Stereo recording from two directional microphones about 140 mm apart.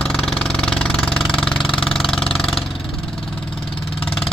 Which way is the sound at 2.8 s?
40° left (ahead or behind).